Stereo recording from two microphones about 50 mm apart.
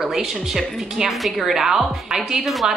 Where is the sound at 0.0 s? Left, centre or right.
Centre.